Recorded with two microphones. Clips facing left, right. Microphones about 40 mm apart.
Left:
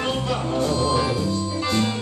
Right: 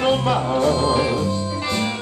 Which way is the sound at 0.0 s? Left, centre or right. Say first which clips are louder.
Right 6 dB; right.